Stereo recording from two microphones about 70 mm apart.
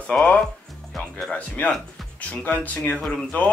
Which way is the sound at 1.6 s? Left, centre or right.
Left.